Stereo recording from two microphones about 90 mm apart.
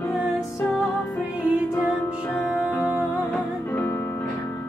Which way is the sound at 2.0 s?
25° left (ahead or behind).